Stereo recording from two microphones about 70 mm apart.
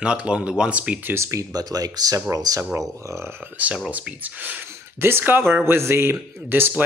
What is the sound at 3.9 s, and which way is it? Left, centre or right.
Speech, right.